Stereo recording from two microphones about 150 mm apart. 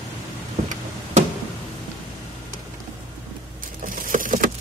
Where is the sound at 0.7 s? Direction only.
50° right (ahead or behind).